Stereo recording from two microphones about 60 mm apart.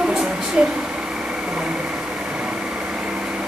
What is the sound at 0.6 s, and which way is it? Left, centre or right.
Speech, centre.